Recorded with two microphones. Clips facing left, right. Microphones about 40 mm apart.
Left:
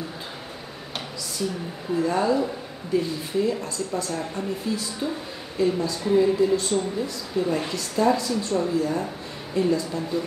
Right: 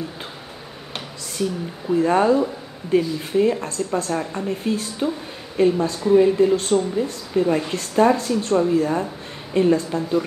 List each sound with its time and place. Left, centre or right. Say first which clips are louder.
2.0 s speech: right 5 dB; right